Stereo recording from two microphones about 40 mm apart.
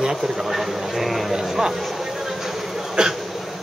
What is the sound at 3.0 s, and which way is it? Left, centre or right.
Speech, centre.